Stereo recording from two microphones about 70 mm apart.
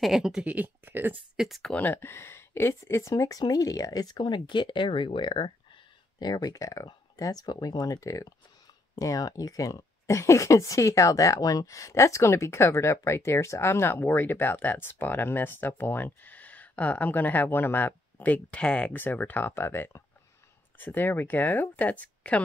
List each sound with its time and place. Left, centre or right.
0.0 s speech: centre
0.8 s speech: right
1.3 s speech: centre
1.8 s speech: left
3.3 s speech: left
6.1 s speech: left; by 18.9 s centre
18.9 s speech: left